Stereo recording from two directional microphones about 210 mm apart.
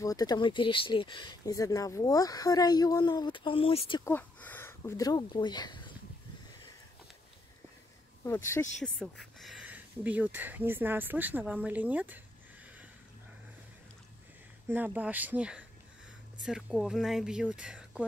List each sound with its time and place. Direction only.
0.0 s speech: 15° left (ahead or behind)
4.0 s speech: 10° left (ahead or behind)
8.8 s speech: centre (ahead or behind)
14.7 s speech: 10° right (ahead or behind)